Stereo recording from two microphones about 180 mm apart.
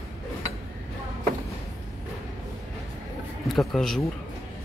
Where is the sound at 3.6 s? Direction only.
Centre (ahead or behind).